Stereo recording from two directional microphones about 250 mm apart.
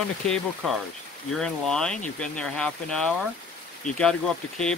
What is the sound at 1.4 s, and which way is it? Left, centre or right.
Speech, centre.